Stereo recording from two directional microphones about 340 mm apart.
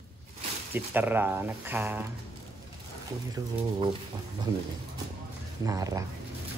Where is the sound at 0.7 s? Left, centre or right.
Centre.